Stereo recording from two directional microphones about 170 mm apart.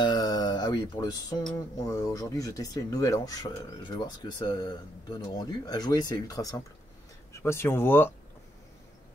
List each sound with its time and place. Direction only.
0.0 s music: 25° left (ahead or behind)
1.9 s speech: 20° left (ahead or behind)